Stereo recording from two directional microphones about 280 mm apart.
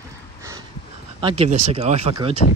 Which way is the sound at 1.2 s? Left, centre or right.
Right.